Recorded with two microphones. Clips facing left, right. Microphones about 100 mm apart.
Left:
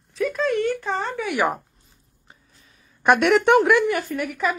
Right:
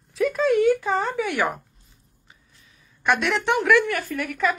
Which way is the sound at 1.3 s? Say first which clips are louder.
Left 2 dB; 15° left (ahead or behind).